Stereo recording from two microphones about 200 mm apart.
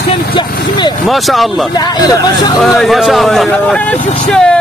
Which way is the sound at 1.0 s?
Centre (ahead or behind).